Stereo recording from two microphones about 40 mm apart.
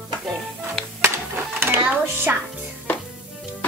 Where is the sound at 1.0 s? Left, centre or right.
Right.